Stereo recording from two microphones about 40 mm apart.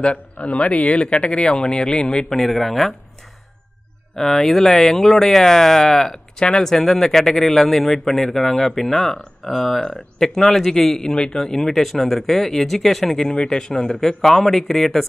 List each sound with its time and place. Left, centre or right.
0.0 s a man's voice: left
2.3 s speech: centre
4.1 s speech: centre